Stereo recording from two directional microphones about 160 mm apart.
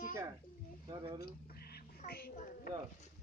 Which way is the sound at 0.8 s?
30° right (ahead or behind).